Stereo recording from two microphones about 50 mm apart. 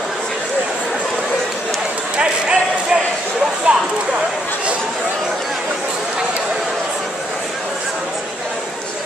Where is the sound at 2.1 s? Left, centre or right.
Centre.